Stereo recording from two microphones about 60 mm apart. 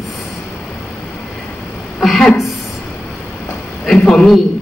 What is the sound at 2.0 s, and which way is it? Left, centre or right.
Speech, centre.